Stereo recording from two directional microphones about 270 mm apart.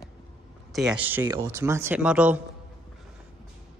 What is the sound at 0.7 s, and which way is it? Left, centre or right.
Speech, centre.